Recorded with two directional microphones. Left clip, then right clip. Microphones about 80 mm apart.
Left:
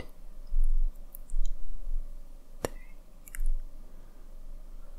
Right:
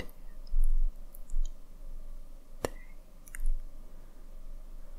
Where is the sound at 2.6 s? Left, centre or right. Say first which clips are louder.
Left 1 dB; centre.